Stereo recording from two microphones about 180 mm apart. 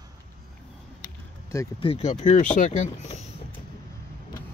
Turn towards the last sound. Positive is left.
turn(degrees=40)  # may be behind; listen again after turning